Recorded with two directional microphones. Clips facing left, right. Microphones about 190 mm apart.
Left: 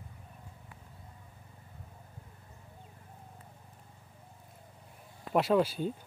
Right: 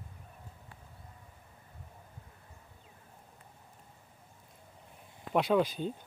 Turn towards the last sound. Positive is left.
turn(degrees=5)  # may be behind; listen again after turning